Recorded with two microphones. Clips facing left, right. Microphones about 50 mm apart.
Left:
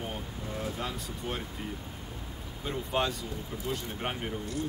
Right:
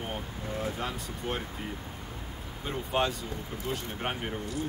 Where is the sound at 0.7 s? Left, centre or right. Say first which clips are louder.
Right 1 dB; centre.